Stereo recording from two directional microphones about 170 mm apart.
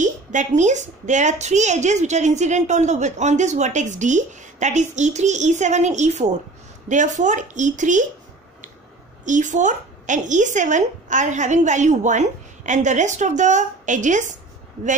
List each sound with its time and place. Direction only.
0.0 s a woman's voice: 45° right (ahead or behind)
9.2 s a woman's voice: 45° right (ahead or behind)